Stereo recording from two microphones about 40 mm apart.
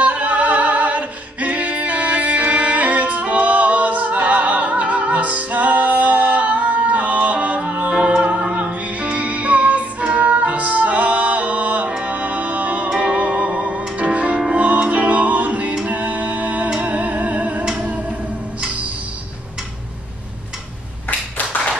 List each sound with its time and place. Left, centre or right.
0.0 s a capella: right
8.5 s music: right
12.9 s music: centre
13.9 s music: right